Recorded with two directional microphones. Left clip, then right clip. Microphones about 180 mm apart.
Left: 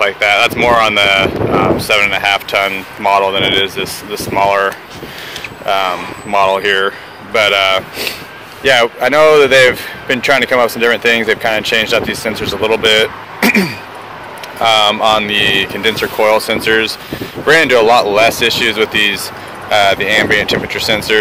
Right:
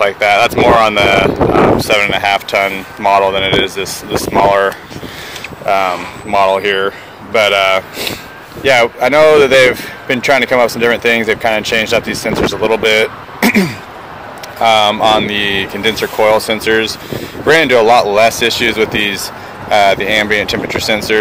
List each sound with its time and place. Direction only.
0.0 s speech: 20° right (ahead or behind)